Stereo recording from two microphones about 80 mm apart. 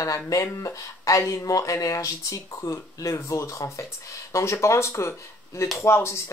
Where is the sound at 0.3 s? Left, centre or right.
Left.